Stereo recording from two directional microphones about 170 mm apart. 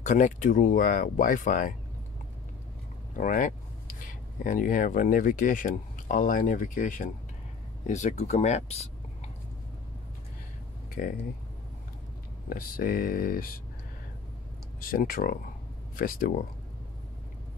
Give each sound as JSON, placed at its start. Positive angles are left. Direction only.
{"t": 0.0, "sound": "speech", "side_deg": 45}
{"t": 3.2, "sound": "speech", "side_deg": 50}
{"t": 11.0, "sound": "speech", "side_deg": 55}
{"t": 12.4, "sound": "speech", "side_deg": 60}
{"t": 14.8, "sound": "speech", "side_deg": 55}